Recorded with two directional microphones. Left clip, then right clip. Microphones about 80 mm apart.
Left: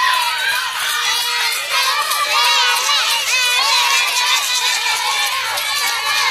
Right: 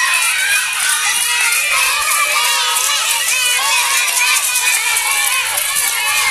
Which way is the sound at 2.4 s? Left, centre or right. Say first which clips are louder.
Left 1 dB; left.